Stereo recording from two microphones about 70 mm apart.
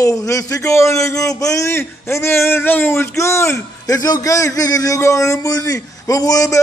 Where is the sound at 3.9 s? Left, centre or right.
Left.